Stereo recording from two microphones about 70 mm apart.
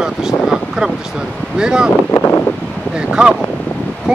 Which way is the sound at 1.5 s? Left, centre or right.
Centre.